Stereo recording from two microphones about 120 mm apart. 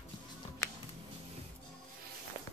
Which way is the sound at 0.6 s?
25° left (ahead or behind).